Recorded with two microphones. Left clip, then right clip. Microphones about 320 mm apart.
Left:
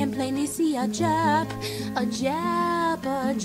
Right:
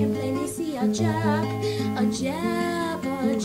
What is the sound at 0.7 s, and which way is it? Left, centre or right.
Music, left.